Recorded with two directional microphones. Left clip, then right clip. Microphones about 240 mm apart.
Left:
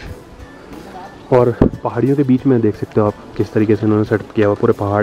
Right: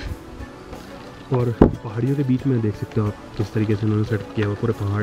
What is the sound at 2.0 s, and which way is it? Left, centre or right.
Speech, right.